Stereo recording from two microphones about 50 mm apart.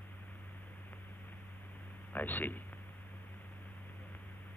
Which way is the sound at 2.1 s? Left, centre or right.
Left.